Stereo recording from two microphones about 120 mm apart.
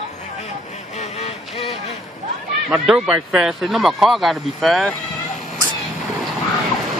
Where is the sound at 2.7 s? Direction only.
5° right (ahead or behind).